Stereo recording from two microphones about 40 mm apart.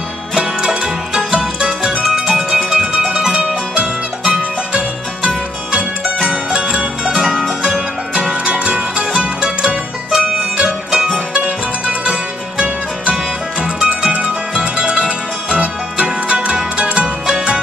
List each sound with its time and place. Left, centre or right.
0.7 s music: centre
7.3 s music: centre
8.1 s music: right
10.1 s music: centre
11.3 s music: right